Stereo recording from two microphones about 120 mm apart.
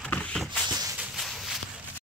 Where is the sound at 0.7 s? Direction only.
35° right (ahead or behind).